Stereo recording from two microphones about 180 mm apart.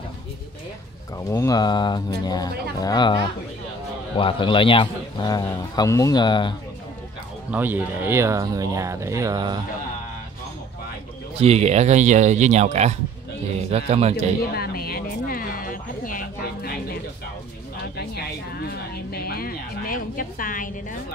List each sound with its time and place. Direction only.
1.1 s a man's voice: 15° left (ahead or behind)
7.5 s speech: 10° right (ahead or behind)
11.3 s speech: 35° right (ahead or behind)
14.5 s music: 60° left (ahead or behind)
17.9 s music: 60° left (ahead or behind)